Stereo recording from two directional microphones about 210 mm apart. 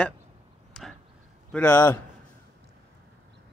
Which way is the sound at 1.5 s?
10° left (ahead or behind).